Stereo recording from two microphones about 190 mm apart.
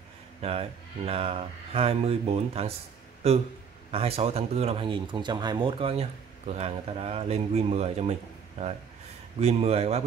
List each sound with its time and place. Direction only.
0.4 s speech: 30° right (ahead or behind)
3.9 s speech: 30° right (ahead or behind)